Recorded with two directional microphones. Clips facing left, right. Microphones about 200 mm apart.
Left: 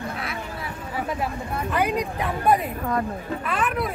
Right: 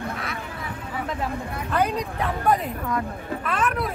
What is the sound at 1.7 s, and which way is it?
Speech, 10° left (ahead or behind).